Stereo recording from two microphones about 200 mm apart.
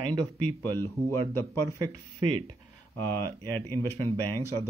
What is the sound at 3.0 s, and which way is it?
Speech, 10° left (ahead or behind).